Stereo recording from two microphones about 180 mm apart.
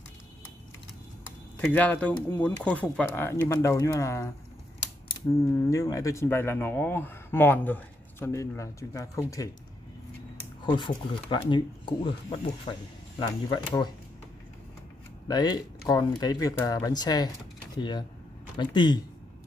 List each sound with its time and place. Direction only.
1.6 s speech: 10° left (ahead or behind)
5.4 s speech: 20° left (ahead or behind)
10.6 s speech: 25° left (ahead or behind)
15.2 s speech: 20° left (ahead or behind)